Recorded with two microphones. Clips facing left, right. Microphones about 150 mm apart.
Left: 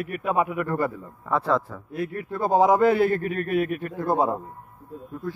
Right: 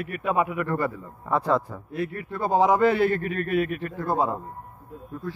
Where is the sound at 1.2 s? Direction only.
10° right (ahead or behind).